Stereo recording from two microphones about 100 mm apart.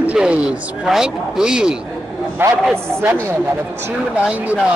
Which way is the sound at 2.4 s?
20° right (ahead or behind).